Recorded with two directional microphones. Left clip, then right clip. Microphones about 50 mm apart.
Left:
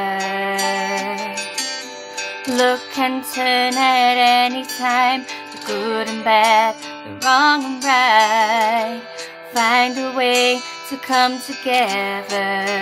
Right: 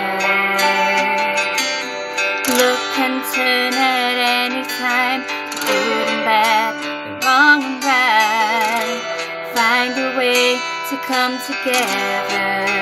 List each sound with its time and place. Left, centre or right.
0.1 s music: centre